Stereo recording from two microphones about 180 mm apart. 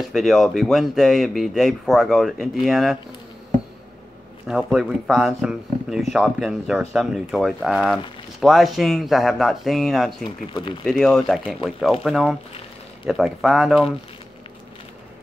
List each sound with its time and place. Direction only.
0.0 s speech: centre (ahead or behind)
4.5 s speech: centre (ahead or behind)
10.2 s speech: 25° left (ahead or behind)
10.9 s speech: centre (ahead or behind)